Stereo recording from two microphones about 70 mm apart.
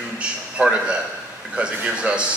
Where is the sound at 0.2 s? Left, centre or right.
Centre.